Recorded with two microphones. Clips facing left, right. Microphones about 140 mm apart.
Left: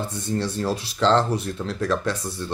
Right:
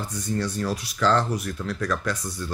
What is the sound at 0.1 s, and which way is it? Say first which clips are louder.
Speech: left 1 dB; 25° left (ahead or behind).